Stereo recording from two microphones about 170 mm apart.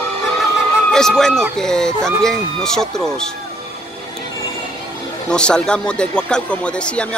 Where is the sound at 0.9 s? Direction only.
5° left (ahead or behind).